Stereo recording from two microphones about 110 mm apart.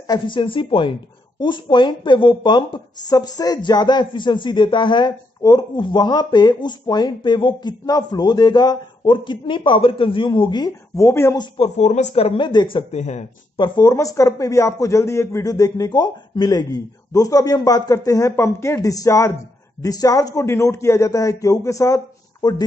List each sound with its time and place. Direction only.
0.0 s speech: 40° left (ahead or behind)
7.8 s speech: 35° left (ahead or behind)
11.0 s speech: 25° left (ahead or behind)
11.3 s speech: 55° left (ahead or behind)
11.7 s speech: 90° left; by 12.8 s 50° left (ahead or behind)
12.9 s speech: 90° left
13.6 s speech: 40° left (ahead or behind)
13.9 s speech: 30° left (ahead or behind)